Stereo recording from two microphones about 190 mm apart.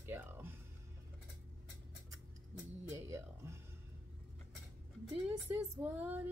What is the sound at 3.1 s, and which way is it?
Music, 15° right (ahead or behind).